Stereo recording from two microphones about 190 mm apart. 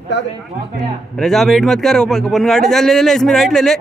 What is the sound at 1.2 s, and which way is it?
A man's voice, centre (ahead or behind).